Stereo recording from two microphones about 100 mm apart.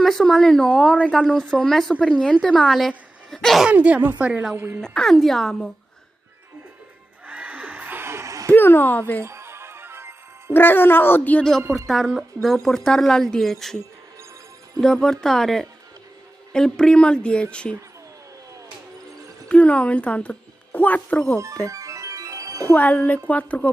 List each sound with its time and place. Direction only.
0.0 s a woman's voice: 5° left (ahead or behind)
3.6 s speech: 10° right (ahead or behind)
4.8 s a woman's voice: 5° left (ahead or behind)
7.2 s a sound: 15° right (ahead or behind); by 8.5 s 30° right (ahead or behind)
8.5 s speech: 20° left (ahead or behind)
9.2 s music: 25° right (ahead or behind)
10.5 s speech: 20° left (ahead or behind)
11.9 s a woman's voice: 5° right (ahead or behind)
14.8 s a woman's voice: 5° left (ahead or behind)
19.4 s a woman's voice: 10° left (ahead or behind)
21.6 s music: 35° right (ahead or behind)
22.7 s speech: 15° left (ahead or behind)